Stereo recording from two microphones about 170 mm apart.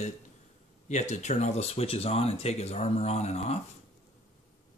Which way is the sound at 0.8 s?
45° left (ahead or behind).